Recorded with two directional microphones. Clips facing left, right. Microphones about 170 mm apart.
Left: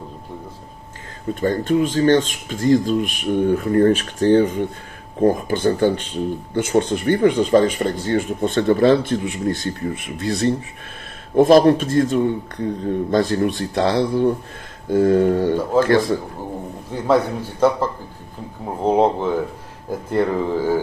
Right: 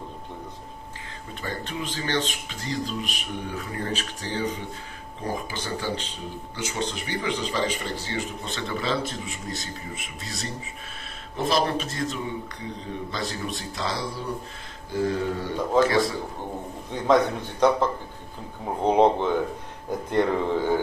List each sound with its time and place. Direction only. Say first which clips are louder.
1.3 s speech: left 15 dB; 45° left (ahead or behind)
16.9 s a man's voice: left 3 dB; 10° left (ahead or behind)